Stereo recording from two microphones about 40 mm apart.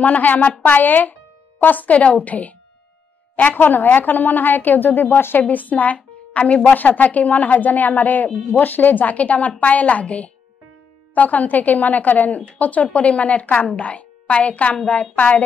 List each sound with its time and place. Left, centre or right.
0.0 s a woman's voice: left
3.3 s speech: left
5.4 s a woman's voice: left